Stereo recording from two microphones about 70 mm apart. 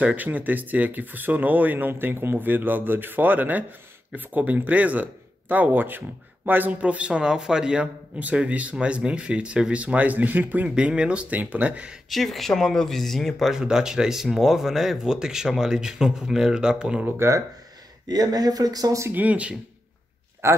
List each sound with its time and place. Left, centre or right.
0.0 s speech: right
10.7 s speech: centre
12.1 s speech: centre
17.2 s speech: right
18.0 s speech: right
19.1 s speech: right
20.4 s speech: right